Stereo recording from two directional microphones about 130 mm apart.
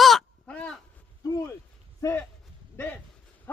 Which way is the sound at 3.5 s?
15° left (ahead or behind).